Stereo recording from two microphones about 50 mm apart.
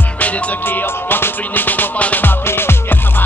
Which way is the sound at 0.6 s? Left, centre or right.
Left.